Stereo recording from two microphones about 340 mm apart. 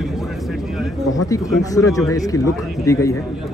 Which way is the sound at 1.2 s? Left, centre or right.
Centre.